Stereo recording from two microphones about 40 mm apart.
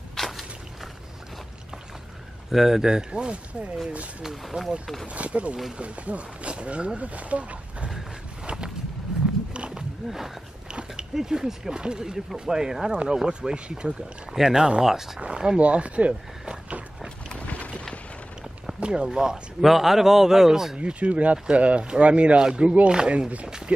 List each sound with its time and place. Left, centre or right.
0.2 s walk: centre
2.5 s speech: centre; by 3.7 s right
4.2 s a man's voice: centre
5.0 s speech: right
9.5 s a sound: right
10.0 s a man's voice: centre
10.7 s biting: right
11.1 s a man's voice: centre
14.3 s a man's voice: centre
15.1 s speech: right
18.8 s a sound: right
19.0 s a man's voice: centre
19.6 s a man's voice: centre
20.7 s speech: right